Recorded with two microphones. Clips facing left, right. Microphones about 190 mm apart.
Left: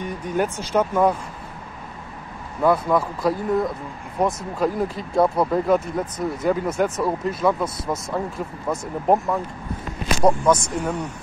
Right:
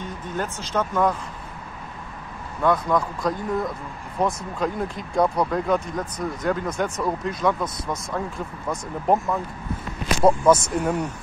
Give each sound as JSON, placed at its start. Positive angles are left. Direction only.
{"t": 0.0, "sound": "speech", "side_deg": 15}
{"t": 2.6, "sound": "speech", "side_deg": 5}
{"t": 9.1, "sound": "speech", "side_deg": 15}
{"t": 10.2, "sound": "speech", "side_deg": -5}